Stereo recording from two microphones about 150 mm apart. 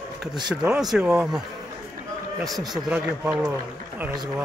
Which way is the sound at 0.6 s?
5° right (ahead or behind).